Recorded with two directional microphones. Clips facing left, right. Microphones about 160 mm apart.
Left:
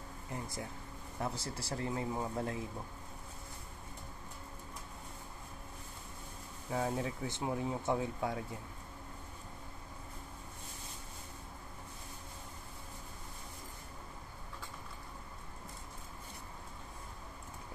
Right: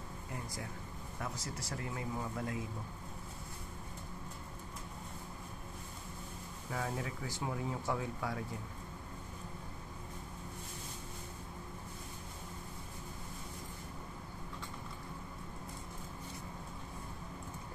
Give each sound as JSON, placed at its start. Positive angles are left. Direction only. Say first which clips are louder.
{"t": 1.2, "sound": "speech", "louder": "left 4 dB", "side_deg": 30}
{"t": 6.7, "sound": "speech", "louder": "left 4 dB", "side_deg": 25}